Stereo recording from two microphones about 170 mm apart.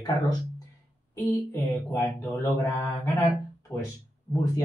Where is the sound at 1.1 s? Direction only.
15° left (ahead or behind).